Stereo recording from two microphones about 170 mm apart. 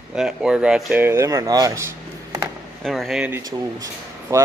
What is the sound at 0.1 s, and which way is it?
Speech, 5° right (ahead or behind).